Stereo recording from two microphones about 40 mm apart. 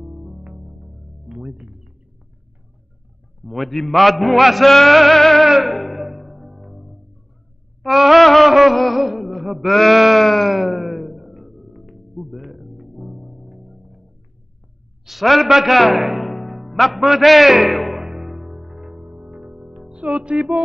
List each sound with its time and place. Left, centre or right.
0.2 s music: right
3.4 s a sound: centre
12.9 s music: centre
15.0 s music: centre
17.0 s a man's voice: centre
18.0 s music: centre; by 20.6 s right